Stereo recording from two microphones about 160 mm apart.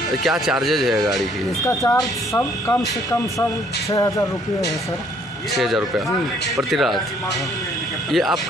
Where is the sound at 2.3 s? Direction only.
15° left (ahead or behind).